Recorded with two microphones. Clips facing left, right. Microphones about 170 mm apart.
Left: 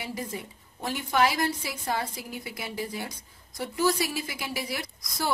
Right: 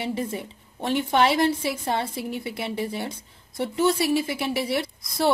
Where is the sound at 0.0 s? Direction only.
30° right (ahead or behind).